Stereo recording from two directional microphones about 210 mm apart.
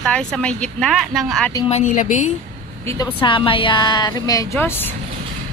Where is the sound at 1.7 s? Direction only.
35° left (ahead or behind).